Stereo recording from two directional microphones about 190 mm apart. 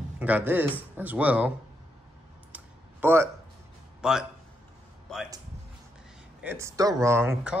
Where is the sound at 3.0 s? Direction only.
15° right (ahead or behind).